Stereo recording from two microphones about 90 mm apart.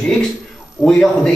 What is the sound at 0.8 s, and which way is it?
Speech, 10° left (ahead or behind).